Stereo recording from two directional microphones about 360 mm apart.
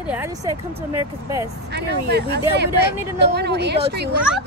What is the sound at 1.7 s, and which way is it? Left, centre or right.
A woman's voice, right.